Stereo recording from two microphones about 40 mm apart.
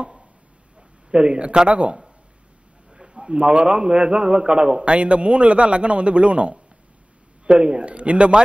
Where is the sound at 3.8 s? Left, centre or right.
Right.